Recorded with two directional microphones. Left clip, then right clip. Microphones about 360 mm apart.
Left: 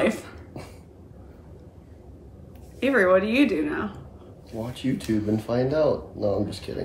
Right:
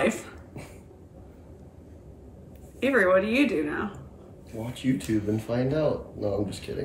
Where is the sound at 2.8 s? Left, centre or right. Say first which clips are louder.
Left 2 dB; centre.